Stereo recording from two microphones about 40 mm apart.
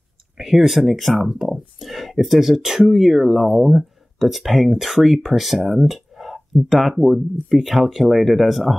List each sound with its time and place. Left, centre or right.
0.4 s speech: centre